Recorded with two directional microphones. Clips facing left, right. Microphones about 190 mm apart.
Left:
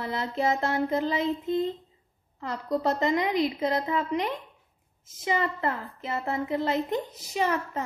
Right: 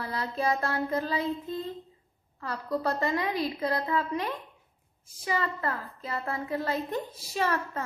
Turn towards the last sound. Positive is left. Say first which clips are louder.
# left 2 dB
turn(degrees=15)  # may be behind; listen again after turning